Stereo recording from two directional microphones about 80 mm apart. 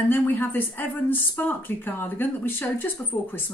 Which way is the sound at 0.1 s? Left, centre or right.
Left.